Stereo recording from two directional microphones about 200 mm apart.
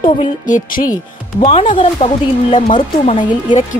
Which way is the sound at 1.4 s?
25° left (ahead or behind).